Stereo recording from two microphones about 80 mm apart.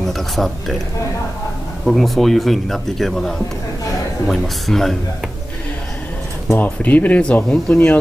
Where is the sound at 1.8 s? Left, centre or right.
Centre.